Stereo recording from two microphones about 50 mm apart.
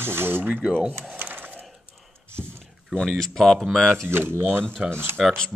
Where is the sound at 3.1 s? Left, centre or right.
Centre.